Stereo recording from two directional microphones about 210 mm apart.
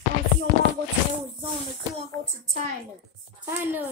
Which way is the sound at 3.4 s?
10° right (ahead or behind).